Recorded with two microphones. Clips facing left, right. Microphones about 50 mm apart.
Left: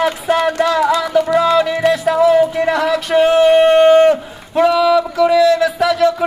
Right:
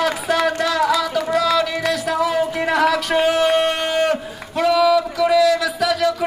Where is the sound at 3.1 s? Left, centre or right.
Left.